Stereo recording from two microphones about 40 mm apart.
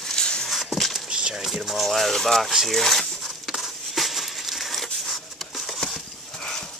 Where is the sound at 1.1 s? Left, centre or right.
Centre.